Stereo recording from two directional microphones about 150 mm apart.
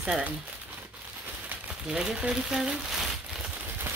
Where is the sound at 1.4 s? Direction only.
10° right (ahead or behind).